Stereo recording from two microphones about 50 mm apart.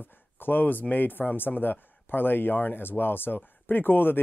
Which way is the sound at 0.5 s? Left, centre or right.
Left.